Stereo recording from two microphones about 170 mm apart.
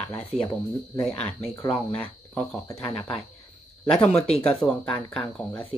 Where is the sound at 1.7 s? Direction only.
10° left (ahead or behind).